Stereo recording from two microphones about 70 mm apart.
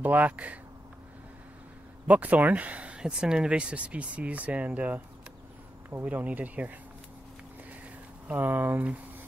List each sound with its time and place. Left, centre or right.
0.0 s speech: right
2.0 s speech: right
8.3 s speech: right